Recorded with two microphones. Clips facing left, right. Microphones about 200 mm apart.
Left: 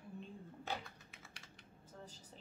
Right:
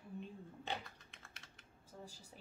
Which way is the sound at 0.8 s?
Centre (ahead or behind).